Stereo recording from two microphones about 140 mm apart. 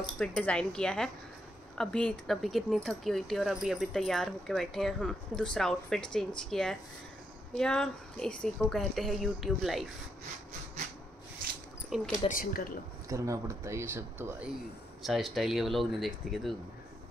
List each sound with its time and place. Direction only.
0.0 s speech: 5° left (ahead or behind)
11.9 s speech: 5° right (ahead or behind)
12.3 s speech: 90° left
13.1 s speech: 25° right (ahead or behind)
15.0 s speech: centre (ahead or behind)